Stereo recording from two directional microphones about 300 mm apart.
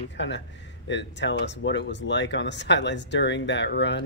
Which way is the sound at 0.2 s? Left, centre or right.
Left.